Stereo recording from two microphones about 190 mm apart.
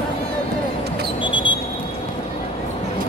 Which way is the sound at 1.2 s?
25° left (ahead or behind).